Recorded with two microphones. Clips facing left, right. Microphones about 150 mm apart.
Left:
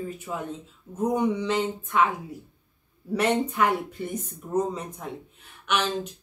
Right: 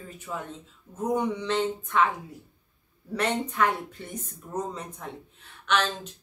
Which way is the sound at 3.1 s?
10° left (ahead or behind).